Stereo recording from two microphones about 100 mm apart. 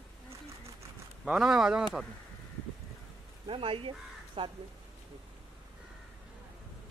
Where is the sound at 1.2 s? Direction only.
5° right (ahead or behind).